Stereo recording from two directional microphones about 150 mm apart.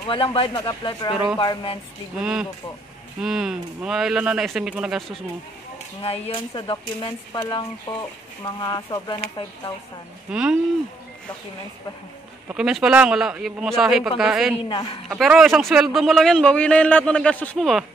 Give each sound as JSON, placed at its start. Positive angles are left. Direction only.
{"t": 0.0, "sound": "speech", "side_deg": 35}
{"t": 3.2, "sound": "a man's voice", "side_deg": -5}
{"t": 6.0, "sound": "speech", "side_deg": 35}
{"t": 10.3, "sound": "a man's voice", "side_deg": -5}
{"t": 12.5, "sound": "a man's voice", "side_deg": -5}
{"t": 14.7, "sound": "speech", "side_deg": 30}
{"t": 15.0, "sound": "a man's voice", "side_deg": 0}